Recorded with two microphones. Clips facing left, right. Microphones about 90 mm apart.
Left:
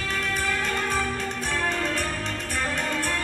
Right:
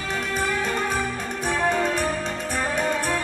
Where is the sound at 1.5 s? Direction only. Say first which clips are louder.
Right 6 dB; 20° right (ahead or behind).